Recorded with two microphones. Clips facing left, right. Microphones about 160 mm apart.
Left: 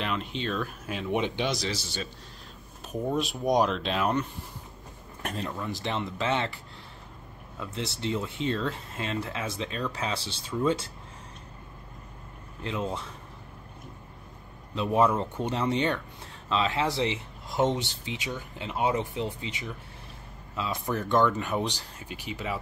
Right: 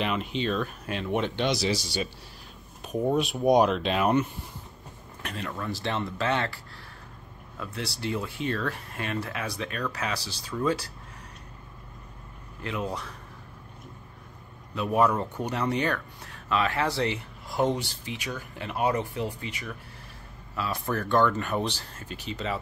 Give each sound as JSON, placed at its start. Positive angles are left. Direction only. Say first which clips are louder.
{"t": 0.0, "sound": "speech", "louder": "right 3 dB", "side_deg": -5}
{"t": 1.5, "sound": "speech", "louder": "right 5 dB", "side_deg": -10}
{"t": 3.2, "sound": "speech", "louder": "right 3 dB", "side_deg": 0}
{"t": 5.2, "sound": "speech", "louder": "left 2 dB", "side_deg": 35}
{"t": 5.5, "sound": "speech", "louder": "right 4 dB", "side_deg": 15}
{"t": 12.6, "sound": "speech", "louder": "even", "side_deg": 25}
{"t": 15.0, "sound": "speech", "louder": "even", "side_deg": 25}